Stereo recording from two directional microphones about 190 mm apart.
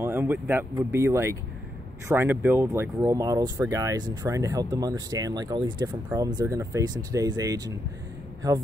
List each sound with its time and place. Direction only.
0.0 s speech: 10° right (ahead or behind)